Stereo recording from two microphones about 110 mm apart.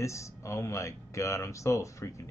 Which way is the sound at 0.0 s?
30° left (ahead or behind).